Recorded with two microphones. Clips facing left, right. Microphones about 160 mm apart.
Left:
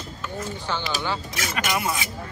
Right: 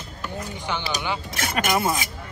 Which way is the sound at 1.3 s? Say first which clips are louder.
Right 3 dB; 50° right (ahead or behind).